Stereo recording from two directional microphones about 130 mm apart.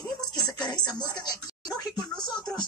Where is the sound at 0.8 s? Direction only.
30° left (ahead or behind).